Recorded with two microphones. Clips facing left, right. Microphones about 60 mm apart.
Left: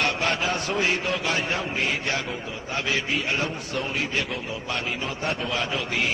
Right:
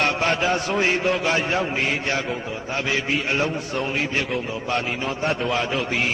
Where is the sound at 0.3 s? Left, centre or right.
Right.